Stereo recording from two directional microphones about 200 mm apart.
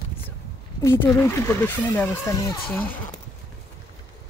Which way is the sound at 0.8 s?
10° left (ahead or behind).